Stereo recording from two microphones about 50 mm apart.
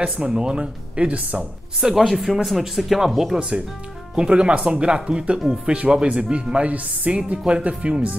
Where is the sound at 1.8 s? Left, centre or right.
Centre.